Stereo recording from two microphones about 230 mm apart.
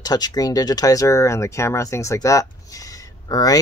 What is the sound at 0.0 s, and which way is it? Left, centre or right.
Speech, centre.